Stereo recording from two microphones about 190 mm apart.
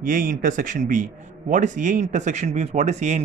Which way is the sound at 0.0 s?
45° right (ahead or behind).